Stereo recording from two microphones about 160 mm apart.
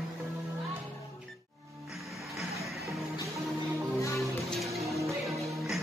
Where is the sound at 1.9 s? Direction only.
Centre (ahead or behind).